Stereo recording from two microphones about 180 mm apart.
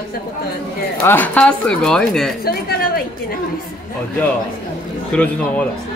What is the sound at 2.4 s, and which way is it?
Speech, 60° left (ahead or behind).